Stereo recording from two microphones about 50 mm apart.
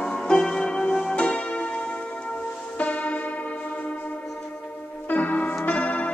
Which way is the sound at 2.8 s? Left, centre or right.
Left.